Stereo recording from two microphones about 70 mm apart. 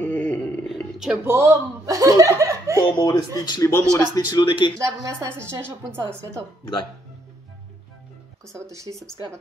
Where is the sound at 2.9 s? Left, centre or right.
Left.